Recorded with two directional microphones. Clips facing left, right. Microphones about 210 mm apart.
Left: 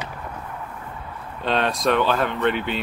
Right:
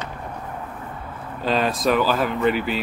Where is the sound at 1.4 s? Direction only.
Centre (ahead or behind).